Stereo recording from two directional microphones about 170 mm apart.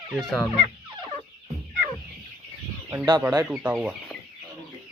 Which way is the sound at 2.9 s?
15° right (ahead or behind).